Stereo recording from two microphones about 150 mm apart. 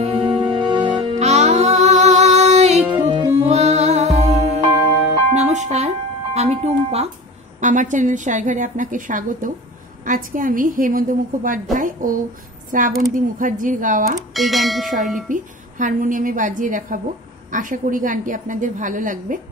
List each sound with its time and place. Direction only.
0.0 s music: 40° right (ahead or behind)
7.6 s a woman's voice: 55° right (ahead or behind)
14.3 s speech: centre (ahead or behind)
15.2 s a woman's voice: 60° right (ahead or behind)